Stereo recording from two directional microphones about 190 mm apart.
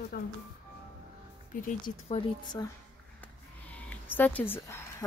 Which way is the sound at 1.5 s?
35° left (ahead or behind).